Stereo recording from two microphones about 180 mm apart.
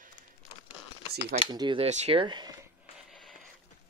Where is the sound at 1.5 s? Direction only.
25° right (ahead or behind).